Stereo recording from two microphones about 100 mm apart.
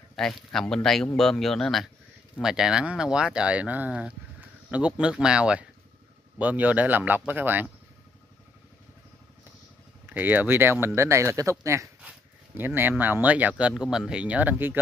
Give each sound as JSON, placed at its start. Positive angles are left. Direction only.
{"t": 0.1, "sound": "speech", "side_deg": 5}
{"t": 10.0, "sound": "speech", "side_deg": -20}